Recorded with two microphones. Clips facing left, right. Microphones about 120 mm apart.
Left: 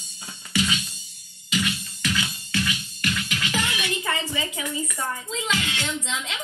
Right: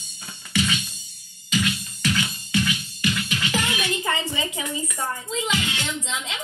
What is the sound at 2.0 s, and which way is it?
Music, 5° right (ahead or behind).